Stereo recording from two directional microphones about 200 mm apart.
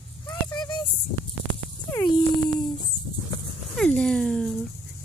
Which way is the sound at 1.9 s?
15° left (ahead or behind).